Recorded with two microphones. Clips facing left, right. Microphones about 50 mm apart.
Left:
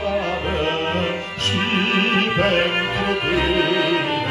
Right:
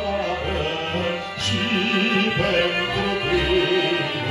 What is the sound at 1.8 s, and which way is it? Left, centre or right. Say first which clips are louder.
Music: left 2 dB; left.